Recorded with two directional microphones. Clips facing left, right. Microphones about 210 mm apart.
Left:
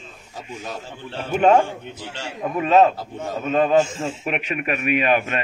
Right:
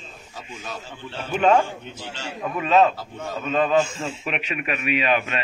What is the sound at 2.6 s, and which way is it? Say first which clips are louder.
A man's voice: left 2 dB; 45° left (ahead or behind).